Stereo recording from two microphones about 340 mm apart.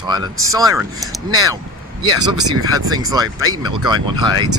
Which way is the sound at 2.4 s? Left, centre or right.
Right.